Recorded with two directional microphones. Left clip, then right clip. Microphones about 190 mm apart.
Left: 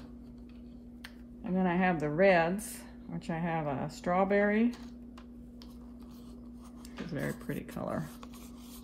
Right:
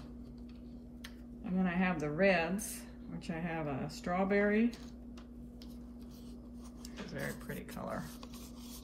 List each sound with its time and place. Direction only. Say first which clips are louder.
1.6 s speech: left 5 dB; 50° left (ahead or behind)
7.1 s speech: left 5 dB; 60° left (ahead or behind)